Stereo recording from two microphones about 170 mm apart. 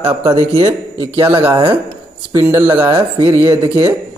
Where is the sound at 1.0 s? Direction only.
30° right (ahead or behind).